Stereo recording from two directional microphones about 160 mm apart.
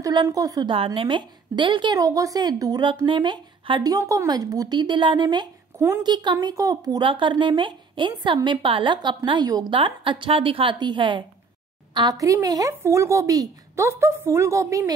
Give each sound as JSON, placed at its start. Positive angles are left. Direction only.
{"t": 0.0, "sound": "speech", "side_deg": -25}
{"t": 0.7, "sound": "a woman's voice", "side_deg": -35}